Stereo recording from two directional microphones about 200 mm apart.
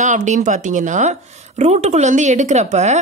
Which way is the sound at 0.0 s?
40° right (ahead or behind).